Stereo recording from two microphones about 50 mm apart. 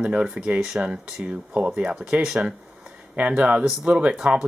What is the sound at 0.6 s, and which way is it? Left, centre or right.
Speech, centre.